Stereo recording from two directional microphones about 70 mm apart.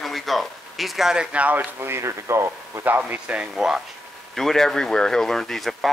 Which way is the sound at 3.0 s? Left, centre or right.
Centre.